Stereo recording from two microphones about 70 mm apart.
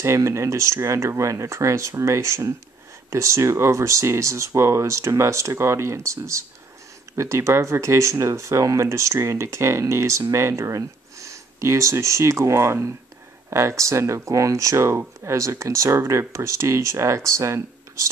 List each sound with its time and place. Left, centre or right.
0.0 s speech: right